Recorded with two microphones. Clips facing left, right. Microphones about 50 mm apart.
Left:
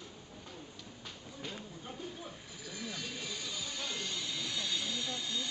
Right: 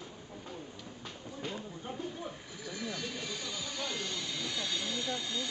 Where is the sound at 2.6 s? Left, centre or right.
Centre.